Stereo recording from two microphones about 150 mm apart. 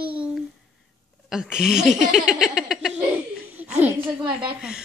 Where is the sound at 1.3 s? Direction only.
5° right (ahead or behind).